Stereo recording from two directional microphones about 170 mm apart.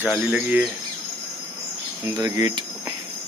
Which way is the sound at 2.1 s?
20° right (ahead or behind).